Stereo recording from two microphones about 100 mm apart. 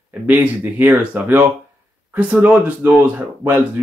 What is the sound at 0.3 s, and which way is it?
Speech, 15° right (ahead or behind).